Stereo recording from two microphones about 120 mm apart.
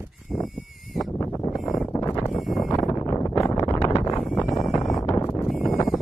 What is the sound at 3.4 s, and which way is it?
Wind noise, 35° left (ahead or behind).